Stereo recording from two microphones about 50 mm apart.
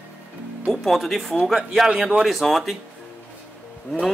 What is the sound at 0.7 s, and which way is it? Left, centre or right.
Speech, centre.